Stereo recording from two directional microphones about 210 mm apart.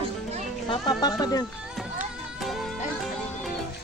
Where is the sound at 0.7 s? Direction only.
20° left (ahead or behind).